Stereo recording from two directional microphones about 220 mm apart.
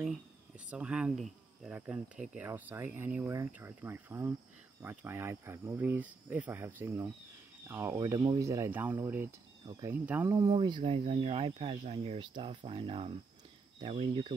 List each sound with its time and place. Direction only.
0.7 s speech: 5° right (ahead or behind); by 14.3 s 25° right (ahead or behind)